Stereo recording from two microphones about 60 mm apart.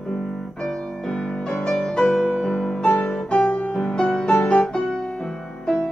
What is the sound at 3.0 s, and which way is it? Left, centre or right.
Music, centre.